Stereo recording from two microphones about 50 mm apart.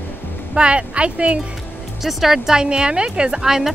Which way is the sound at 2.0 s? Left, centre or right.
Centre.